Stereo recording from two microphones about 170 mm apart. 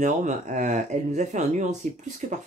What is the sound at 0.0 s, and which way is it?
Speech, 45° right (ahead or behind).